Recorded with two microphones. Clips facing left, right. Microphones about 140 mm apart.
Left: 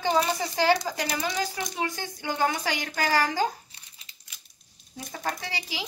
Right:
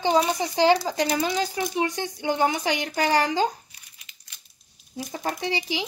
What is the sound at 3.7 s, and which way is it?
Crumpling, 30° left (ahead or behind).